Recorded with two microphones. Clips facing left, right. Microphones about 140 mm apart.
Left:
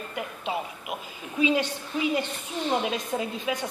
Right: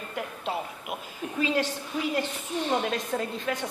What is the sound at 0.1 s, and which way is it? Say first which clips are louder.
A man's voice: even; centre (ahead or behind).